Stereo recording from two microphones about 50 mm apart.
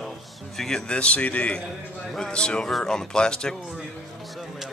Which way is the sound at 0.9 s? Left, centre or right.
Left.